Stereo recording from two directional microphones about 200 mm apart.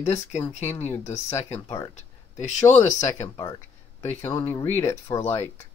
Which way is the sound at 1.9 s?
35° left (ahead or behind).